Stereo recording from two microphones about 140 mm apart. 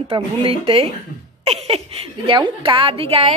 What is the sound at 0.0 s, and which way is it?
A woman's voice, 40° right (ahead or behind).